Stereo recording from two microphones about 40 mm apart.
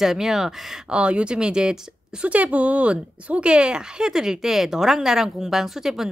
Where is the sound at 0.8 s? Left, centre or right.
Right.